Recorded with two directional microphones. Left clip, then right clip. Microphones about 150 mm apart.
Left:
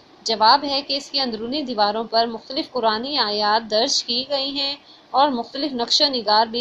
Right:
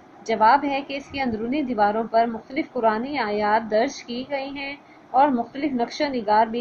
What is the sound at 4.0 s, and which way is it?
Speech, 15° right (ahead or behind).